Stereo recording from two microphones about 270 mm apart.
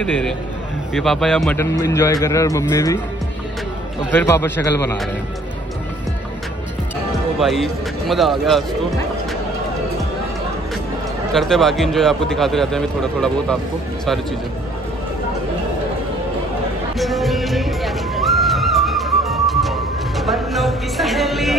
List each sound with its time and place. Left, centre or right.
0.9 s a man's voice: centre
4.1 s a man's voice: centre
7.3 s a man's voice: centre
11.3 s a man's voice: centre
17.0 s music: centre